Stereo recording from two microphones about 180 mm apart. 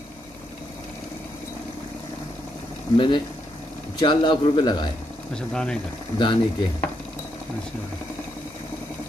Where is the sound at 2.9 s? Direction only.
25° left (ahead or behind).